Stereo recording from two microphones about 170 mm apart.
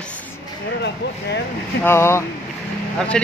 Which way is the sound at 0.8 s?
80° left.